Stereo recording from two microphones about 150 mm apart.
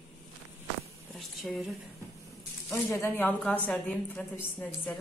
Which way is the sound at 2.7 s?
15° left (ahead or behind).